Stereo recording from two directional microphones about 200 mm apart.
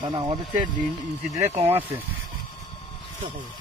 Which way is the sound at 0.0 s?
25° right (ahead or behind).